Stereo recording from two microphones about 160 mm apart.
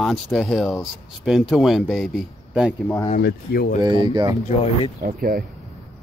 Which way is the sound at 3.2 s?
75° left (ahead or behind).